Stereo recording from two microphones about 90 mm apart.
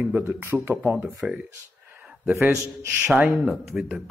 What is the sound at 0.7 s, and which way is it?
Speech, 15° right (ahead or behind).